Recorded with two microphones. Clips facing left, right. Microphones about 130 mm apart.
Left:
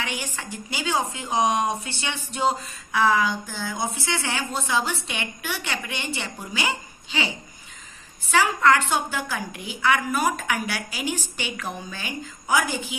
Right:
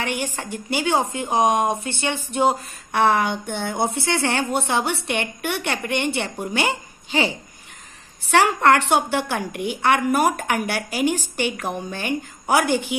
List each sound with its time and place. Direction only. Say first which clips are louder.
0.0 s a woman's voice: right 5 dB; 55° right (ahead or behind)
8.3 s a woman's voice: right 3 dB; 65° right (ahead or behind)